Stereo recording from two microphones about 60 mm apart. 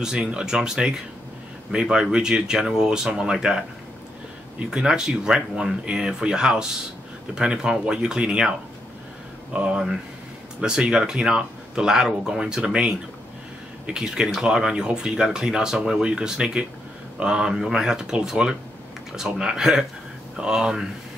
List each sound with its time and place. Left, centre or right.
0.0 s speech: centre
13.9 s speech: centre